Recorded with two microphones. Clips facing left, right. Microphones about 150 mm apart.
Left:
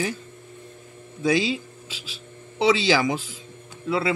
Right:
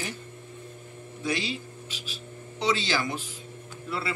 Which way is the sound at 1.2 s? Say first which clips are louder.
Left 8 dB; 90° left.